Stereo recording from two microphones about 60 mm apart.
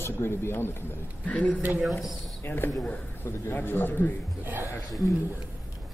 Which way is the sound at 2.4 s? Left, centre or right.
Left.